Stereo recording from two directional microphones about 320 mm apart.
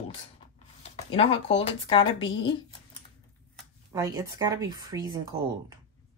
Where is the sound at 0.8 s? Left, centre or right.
Centre.